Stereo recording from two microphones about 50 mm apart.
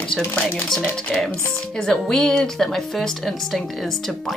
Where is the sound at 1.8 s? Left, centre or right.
Centre.